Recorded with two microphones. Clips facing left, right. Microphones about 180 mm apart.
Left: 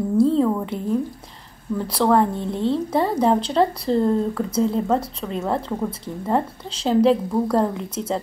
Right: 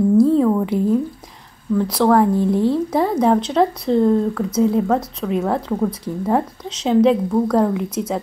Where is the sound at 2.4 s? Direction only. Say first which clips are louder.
Right 6 dB; 25° left (ahead or behind).